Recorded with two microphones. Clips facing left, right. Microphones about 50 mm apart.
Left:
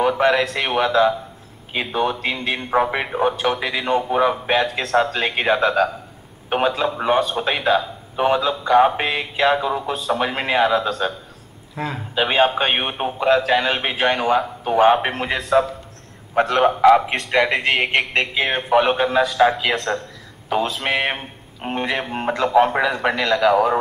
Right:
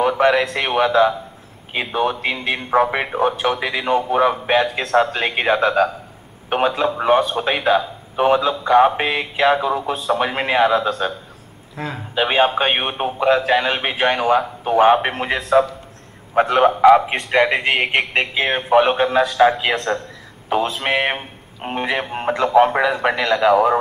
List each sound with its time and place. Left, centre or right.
0.0 s a man's voice: centre
11.7 s a man's voice: centre
20.4 s speech: centre